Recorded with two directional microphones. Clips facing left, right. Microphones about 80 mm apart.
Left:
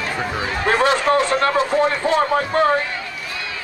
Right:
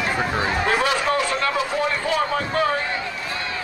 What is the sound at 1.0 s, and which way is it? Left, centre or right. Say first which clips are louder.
Speech: left 5 dB; left.